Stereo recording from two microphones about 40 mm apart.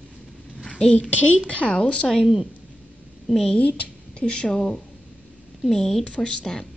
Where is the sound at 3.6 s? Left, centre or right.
Left.